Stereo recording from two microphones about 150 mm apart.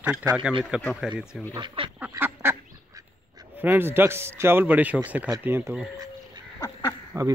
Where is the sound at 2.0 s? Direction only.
15° right (ahead or behind).